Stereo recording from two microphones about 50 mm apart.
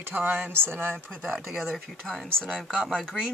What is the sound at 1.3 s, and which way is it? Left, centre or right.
Speech, centre.